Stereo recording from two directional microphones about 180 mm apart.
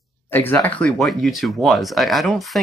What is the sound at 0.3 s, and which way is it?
Speech, 10° left (ahead or behind).